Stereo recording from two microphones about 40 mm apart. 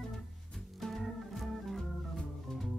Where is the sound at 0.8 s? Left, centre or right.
Centre.